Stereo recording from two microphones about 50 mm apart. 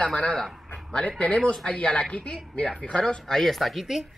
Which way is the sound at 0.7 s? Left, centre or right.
Left.